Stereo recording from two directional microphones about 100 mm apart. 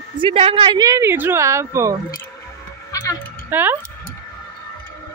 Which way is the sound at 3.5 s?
20° right (ahead or behind).